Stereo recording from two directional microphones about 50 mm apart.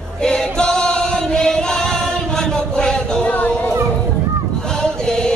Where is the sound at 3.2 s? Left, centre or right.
Left.